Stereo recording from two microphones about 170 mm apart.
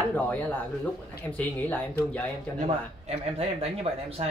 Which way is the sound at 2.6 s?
35° right (ahead or behind).